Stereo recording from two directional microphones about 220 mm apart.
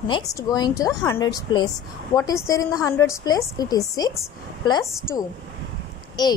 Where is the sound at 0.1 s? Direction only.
15° left (ahead or behind).